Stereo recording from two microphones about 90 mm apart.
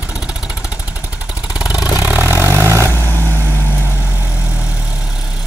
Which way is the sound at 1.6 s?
10° right (ahead or behind).